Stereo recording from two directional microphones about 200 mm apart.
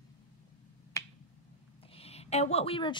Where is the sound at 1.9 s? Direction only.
30° left (ahead or behind).